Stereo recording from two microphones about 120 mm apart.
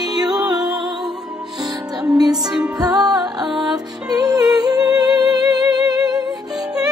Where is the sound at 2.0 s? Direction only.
30° right (ahead or behind).